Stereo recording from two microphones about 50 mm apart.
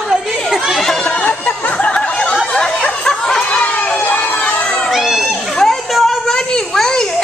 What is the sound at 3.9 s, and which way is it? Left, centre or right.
Crowd, left.